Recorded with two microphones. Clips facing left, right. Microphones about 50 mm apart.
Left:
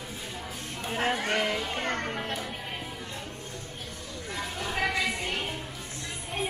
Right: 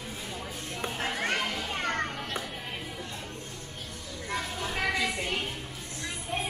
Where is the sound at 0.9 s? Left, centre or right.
Left.